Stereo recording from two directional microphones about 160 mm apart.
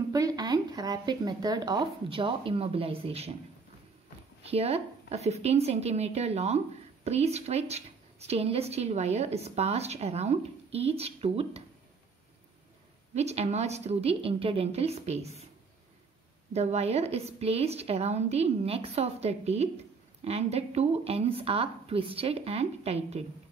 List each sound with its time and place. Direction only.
0.1 s speech: 25° right (ahead or behind); by 3.3 s 40° right (ahead or behind)
4.5 s a woman's voice: 40° right (ahead or behind)
13.1 s a woman's voice: 45° right (ahead or behind)
16.5 s a woman's voice: 40° right (ahead or behind)